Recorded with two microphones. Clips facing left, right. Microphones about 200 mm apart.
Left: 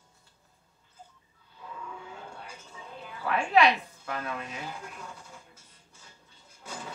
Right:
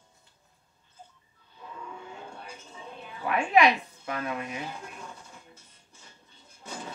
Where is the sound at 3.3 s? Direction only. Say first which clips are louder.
Right 1 dB; 15° right (ahead or behind).